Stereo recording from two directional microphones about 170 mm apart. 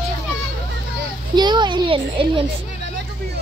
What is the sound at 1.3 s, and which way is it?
Speech, 25° right (ahead or behind).